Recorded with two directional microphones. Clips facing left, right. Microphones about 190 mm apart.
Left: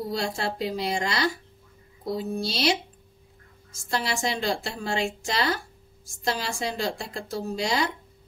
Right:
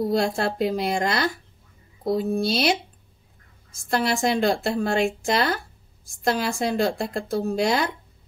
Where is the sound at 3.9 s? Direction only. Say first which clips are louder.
Right 6 dB; 55° right (ahead or behind).